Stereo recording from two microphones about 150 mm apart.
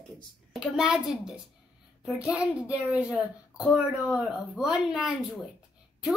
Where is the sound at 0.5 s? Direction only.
5° right (ahead or behind).